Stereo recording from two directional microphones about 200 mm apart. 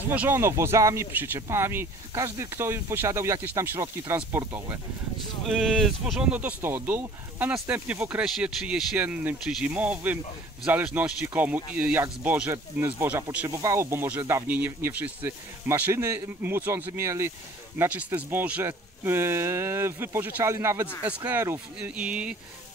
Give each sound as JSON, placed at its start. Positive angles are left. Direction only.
{"t": 0.1, "sound": "speech", "side_deg": -10}
{"t": 5.5, "sound": "speech", "side_deg": 0}